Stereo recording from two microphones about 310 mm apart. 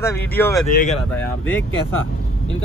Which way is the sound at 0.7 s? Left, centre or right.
Left.